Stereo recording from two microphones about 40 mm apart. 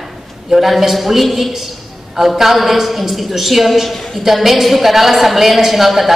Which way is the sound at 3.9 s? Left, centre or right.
Centre.